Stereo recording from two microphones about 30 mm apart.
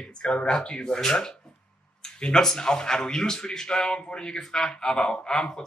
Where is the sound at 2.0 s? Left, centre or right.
Left.